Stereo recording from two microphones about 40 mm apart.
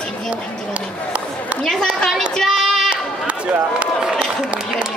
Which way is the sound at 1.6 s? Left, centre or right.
Centre.